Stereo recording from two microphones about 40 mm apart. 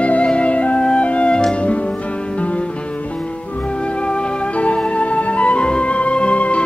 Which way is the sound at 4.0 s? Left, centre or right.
Left.